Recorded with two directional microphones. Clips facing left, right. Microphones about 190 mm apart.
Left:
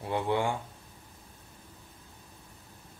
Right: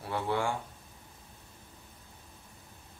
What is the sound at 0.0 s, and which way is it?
Speech, 20° left (ahead or behind).